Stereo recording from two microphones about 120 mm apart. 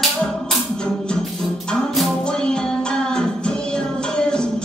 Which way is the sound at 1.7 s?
5° left (ahead or behind).